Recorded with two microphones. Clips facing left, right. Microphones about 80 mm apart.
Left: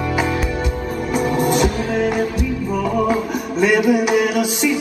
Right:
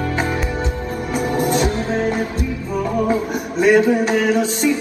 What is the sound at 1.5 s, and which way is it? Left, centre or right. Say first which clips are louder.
Music: left 1 dB; right.